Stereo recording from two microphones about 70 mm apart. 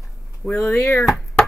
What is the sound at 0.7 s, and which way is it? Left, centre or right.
Speech, left.